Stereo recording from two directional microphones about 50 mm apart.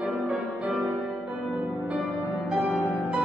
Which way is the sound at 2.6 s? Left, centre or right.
Right.